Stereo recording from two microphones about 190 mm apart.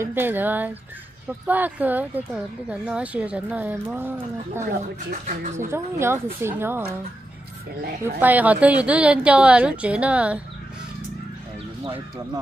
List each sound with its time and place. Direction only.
0.0 s speech: 10° right (ahead or behind)
5.1 s speech: 40° right (ahead or behind)
5.7 s speech: 15° right (ahead or behind)
8.2 s speech: 10° right (ahead or behind)